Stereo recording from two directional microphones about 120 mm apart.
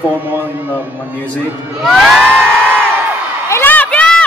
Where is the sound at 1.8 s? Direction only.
Centre (ahead or behind).